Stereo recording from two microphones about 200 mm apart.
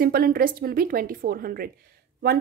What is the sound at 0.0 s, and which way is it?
A woman's voice, 50° right (ahead or behind).